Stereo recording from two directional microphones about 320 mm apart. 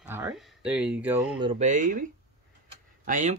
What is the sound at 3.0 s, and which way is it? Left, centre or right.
Speech, right.